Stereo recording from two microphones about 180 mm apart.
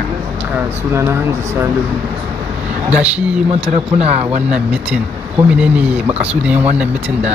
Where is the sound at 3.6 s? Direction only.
35° right (ahead or behind).